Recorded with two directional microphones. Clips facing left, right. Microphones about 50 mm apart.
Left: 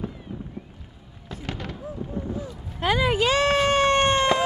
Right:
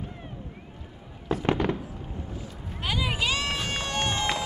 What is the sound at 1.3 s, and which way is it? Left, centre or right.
Fireworks, right.